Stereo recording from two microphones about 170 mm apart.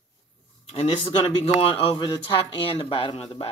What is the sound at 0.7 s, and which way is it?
Speech, 35° left (ahead or behind).